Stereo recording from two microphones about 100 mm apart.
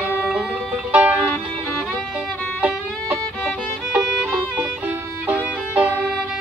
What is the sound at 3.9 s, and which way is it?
Music, 15° right (ahead or behind).